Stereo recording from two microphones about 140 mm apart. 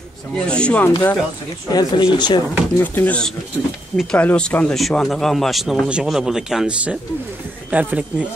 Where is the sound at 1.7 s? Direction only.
30° left (ahead or behind).